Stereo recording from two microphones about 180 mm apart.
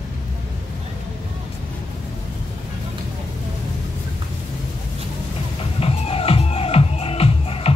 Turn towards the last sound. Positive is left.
turn(degrees=35)  # may be behind; listen again after turning